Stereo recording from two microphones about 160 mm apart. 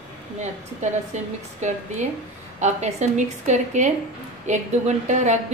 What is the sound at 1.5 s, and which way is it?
A woman's voice, 45° right (ahead or behind).